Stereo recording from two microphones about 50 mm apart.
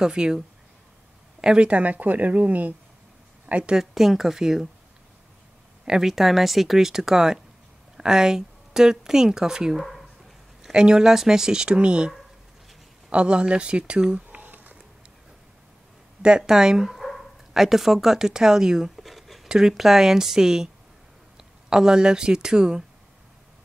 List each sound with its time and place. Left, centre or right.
0.0 s speech: centre
1.4 s a woman's voice: centre
3.7 s speech: centre
5.9 s speech: centre
13.1 s speech: centre
14.3 s a sound: right
16.2 s speech: centre
17.0 s bow-wow: centre
19.4 s a sound: centre
19.7 s speech: centre